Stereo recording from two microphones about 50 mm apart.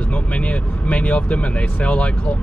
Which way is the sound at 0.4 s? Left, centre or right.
Left.